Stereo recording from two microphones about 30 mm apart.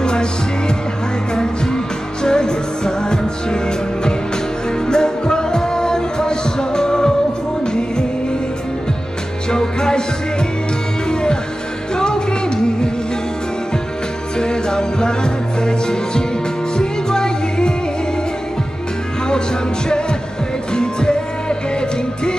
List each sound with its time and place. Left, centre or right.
0.0 s music: left
9.5 s music: left
11.9 s music: left
14.4 s music: left
20.7 s music: left